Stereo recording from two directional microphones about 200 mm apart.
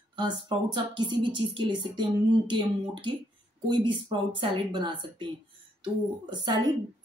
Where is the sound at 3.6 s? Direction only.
25° right (ahead or behind).